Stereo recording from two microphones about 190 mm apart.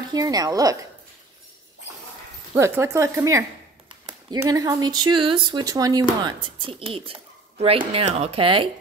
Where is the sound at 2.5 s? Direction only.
15° right (ahead or behind).